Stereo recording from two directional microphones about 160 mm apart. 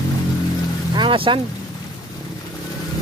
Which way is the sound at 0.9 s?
30° right (ahead or behind).